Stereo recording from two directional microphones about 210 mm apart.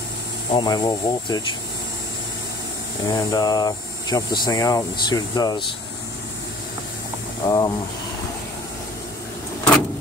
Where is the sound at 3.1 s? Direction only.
20° left (ahead or behind).